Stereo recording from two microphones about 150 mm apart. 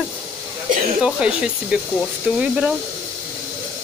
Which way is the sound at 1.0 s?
5° right (ahead or behind).